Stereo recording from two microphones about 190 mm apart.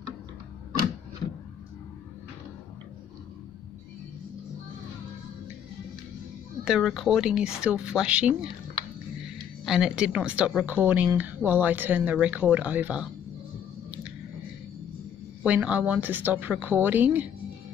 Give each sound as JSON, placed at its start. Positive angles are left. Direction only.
{"t": 6.6, "sound": "speech", "side_deg": 0}
{"t": 9.7, "sound": "a woman's voice", "side_deg": -5}
{"t": 15.4, "sound": "a woman's voice", "side_deg": -5}